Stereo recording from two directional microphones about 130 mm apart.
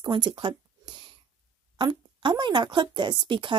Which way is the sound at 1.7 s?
35° right (ahead or behind).